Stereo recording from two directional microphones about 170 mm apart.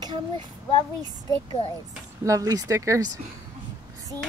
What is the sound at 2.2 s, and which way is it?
Speech, 20° right (ahead or behind).